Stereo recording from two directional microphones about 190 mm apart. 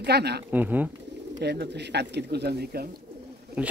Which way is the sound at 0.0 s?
60° right (ahead or behind).